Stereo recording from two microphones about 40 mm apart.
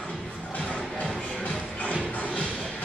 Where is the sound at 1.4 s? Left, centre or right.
Left.